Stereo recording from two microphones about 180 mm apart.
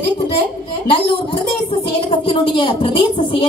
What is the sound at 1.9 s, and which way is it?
A woman's voice, 30° left (ahead or behind).